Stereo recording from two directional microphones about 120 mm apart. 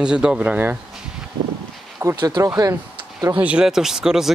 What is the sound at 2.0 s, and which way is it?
Speech, 20° right (ahead or behind).